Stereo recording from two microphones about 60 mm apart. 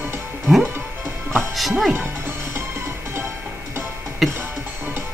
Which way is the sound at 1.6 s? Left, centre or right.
Centre.